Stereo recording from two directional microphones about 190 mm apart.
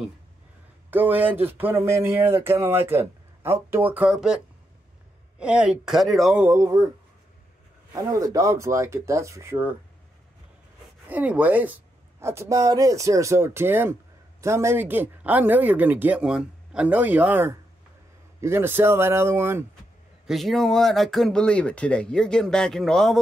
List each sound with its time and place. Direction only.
0.8 s speech: 10° right (ahead or behind)
5.4 s speech: 5° right (ahead or behind)
6.5 s speech: 15° right (ahead or behind)
7.9 s speech: 15° right (ahead or behind)
11.1 s speech: 10° right (ahead or behind)
20.2 s speech: centre (ahead or behind)